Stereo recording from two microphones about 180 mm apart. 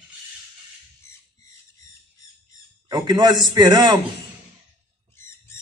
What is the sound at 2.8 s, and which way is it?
A man's voice, 25° right (ahead or behind).